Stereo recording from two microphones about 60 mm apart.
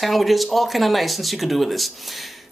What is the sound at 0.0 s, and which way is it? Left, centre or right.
Speech, centre.